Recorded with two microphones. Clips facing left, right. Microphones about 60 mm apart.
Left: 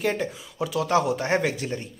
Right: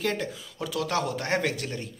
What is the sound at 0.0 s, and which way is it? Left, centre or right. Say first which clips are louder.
A man's voice: left 3 dB; centre.